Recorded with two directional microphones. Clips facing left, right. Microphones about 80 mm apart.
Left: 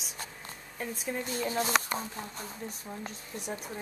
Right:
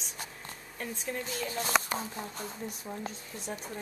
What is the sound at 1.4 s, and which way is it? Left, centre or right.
Speech, left.